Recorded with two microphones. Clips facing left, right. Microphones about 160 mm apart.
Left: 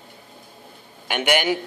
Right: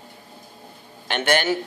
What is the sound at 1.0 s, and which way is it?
Speech, 10° left (ahead or behind).